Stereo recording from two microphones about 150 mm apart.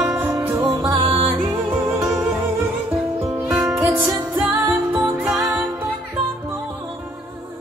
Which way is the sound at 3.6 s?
15° right (ahead or behind).